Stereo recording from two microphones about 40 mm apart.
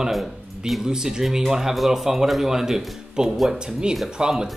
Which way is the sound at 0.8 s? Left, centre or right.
Centre.